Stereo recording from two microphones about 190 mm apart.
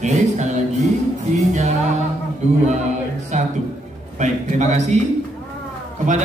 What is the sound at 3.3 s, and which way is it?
Music, 40° right (ahead or behind).